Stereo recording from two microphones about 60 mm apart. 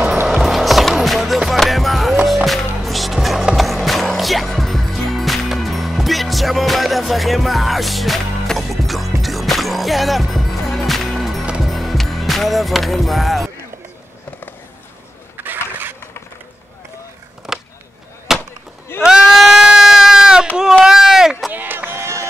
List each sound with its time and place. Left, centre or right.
0.3 s skateboard: centre
3.5 s music: centre
15.4 s skateboard: right
17.5 s skateboard: centre
18.3 s a sound: centre
20.8 s chop: centre
21.5 s run: right
22.0 s run: right